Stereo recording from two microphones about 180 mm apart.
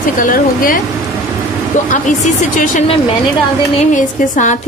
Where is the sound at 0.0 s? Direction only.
50° left (ahead or behind).